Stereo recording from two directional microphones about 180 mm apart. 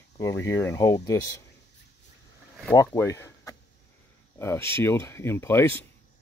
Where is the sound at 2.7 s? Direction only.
20° left (ahead or behind).